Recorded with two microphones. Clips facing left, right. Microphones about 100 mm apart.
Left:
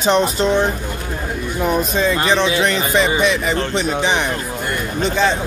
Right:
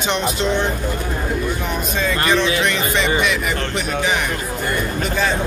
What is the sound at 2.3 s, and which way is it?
Speech, 30° left (ahead or behind).